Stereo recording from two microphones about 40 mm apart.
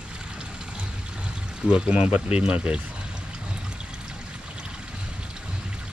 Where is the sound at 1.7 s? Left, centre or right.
Right.